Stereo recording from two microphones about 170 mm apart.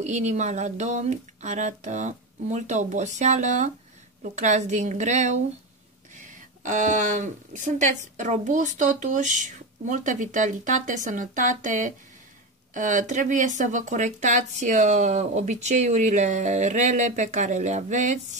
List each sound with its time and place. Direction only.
0.0 s a woman's voice: 45° right (ahead or behind)